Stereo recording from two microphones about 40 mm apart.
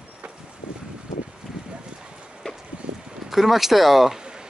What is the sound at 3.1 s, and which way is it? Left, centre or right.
Speech, centre.